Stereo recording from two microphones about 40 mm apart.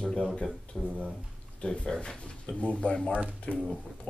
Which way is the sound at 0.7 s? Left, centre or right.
Left.